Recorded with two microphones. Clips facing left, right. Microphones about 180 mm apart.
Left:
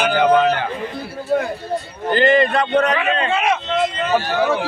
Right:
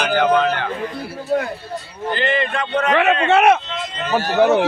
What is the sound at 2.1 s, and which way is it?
Speech, 40° left (ahead or behind).